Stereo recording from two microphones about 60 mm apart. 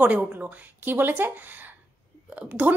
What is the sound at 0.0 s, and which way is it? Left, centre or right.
A woman's voice, right.